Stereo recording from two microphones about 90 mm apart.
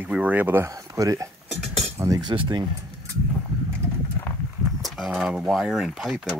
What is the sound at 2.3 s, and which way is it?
Speech, 60° right (ahead or behind).